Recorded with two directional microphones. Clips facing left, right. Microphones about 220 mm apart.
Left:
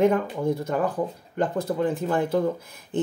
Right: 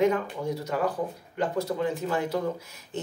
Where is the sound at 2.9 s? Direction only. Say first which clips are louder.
Left 9 dB; 55° left (ahead or behind).